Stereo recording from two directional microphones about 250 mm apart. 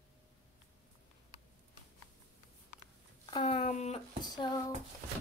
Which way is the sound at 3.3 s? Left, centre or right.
Left.